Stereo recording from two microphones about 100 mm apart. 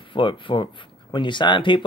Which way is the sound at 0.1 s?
55° left (ahead or behind).